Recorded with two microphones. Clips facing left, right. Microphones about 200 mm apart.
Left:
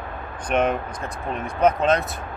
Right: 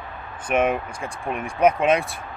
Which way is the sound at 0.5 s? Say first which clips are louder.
Even; 10° right (ahead or behind).